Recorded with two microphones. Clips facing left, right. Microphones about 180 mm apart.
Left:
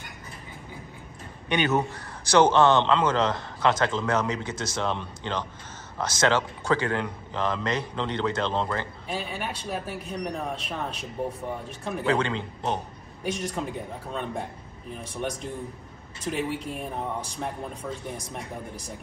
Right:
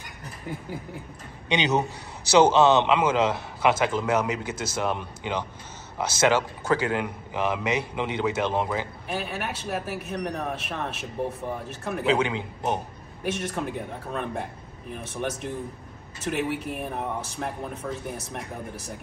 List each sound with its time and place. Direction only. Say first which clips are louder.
1.5 s a man's voice: even; 20° right (ahead or behind)
13.2 s a man's voice: right 1 dB; centre (ahead or behind)